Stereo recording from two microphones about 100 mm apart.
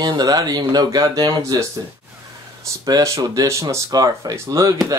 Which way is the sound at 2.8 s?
35° right (ahead or behind).